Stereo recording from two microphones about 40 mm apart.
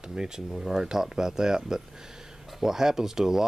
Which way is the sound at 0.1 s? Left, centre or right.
Centre.